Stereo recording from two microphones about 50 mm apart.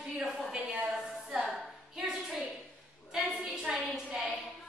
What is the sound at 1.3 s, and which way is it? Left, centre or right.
Music, centre.